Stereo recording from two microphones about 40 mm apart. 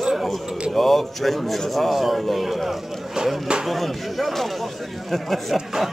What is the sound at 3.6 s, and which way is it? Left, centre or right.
A man's voice, centre.